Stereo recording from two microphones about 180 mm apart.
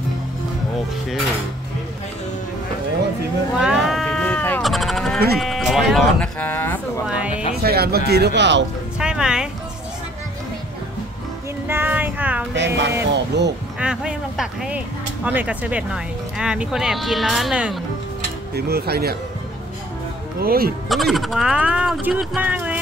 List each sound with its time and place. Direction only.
3.6 s sheep: centre (ahead or behind)
5.4 s speech: centre (ahead or behind)
7.1 s music: 5° right (ahead or behind)
7.6 s speech: 60° right (ahead or behind); by 8.6 s 75° right (ahead or behind)
9.0 s music: 5° right (ahead or behind)
11.6 s a sound: 10° right (ahead or behind)
12.5 s speech: 75° right (ahead or behind)
13.7 s speech: 5° right (ahead or behind)
18.5 s speech: 60° right (ahead or behind)
20.3 s speech: 55° right (ahead or behind)
20.9 s speech: centre (ahead or behind)